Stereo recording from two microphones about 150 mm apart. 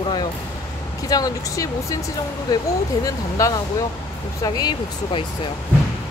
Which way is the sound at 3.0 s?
25° left (ahead or behind).